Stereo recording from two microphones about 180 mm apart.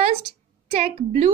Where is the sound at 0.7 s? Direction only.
35° right (ahead or behind).